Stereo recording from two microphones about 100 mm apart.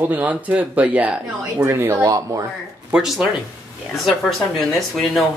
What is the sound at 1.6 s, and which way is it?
Speech, 25° right (ahead or behind).